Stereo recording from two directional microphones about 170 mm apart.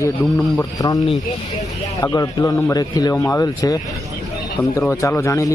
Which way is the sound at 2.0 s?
20° left (ahead or behind).